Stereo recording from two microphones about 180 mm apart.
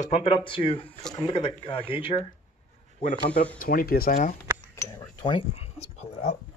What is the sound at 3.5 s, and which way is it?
Speech, 50° left (ahead or behind).